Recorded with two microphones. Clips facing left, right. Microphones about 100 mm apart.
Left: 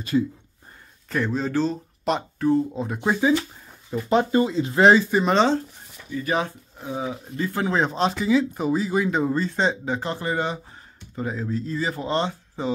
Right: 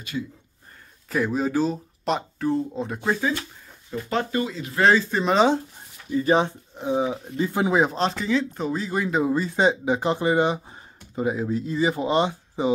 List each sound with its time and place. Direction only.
0.1 s speech: 30° left (ahead or behind)
1.0 s speech: 5° right (ahead or behind)
3.0 s speech: 15° left (ahead or behind)
5.1 s speech: centre (ahead or behind)
6.1 s speech: 30° right (ahead or behind)
7.9 s speech: centre (ahead or behind); by 12.7 s 15° right (ahead or behind)